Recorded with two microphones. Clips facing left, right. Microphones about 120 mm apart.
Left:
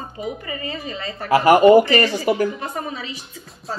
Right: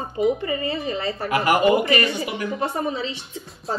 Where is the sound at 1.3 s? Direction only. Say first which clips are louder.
Left 7 dB; 30° left (ahead or behind).